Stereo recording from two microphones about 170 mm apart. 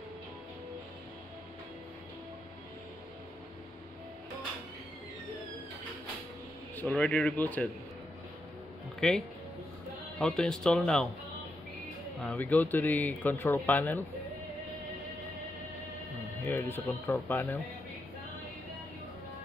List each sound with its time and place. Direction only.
6.8 s speech: 5° left (ahead or behind)
9.0 s speech: 5° left (ahead or behind)
12.2 s speech: 10° left (ahead or behind)
16.4 s speech: 10° left (ahead or behind)